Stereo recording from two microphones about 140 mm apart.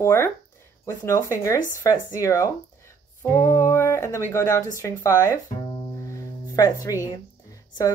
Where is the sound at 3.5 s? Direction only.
20° left (ahead or behind).